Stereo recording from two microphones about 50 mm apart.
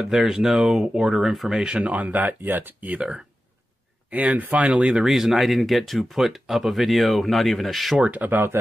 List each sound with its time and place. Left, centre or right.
0.1 s speech: centre
1.6 s speech: right
4.1 s speech: right
4.9 s speech: centre
8.0 s speech: right